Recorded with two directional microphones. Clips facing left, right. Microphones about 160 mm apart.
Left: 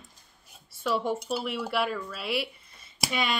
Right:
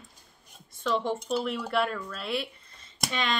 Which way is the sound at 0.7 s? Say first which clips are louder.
Even; 10° left (ahead or behind).